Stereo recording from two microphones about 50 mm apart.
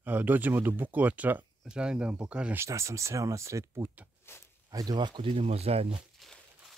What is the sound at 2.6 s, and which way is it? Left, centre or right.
Speech, right.